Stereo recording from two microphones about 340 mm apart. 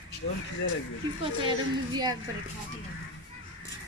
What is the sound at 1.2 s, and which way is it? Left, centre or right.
Speech, centre.